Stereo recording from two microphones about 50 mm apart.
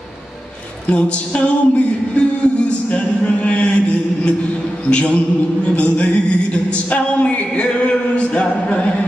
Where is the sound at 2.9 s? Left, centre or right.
Left.